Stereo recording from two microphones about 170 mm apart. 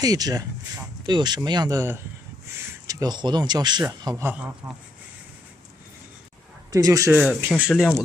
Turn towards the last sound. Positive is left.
turn(degrees=0)  # may be behind; listen again after turning